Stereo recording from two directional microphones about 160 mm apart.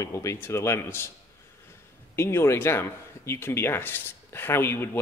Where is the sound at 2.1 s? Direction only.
15° left (ahead or behind).